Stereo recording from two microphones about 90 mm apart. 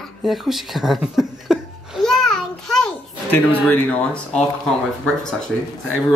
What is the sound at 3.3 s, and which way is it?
Speech, 20° left (ahead or behind).